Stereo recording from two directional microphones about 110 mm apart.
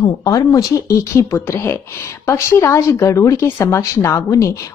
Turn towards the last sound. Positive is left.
turn(degrees=30)  # may be behind; listen again after turning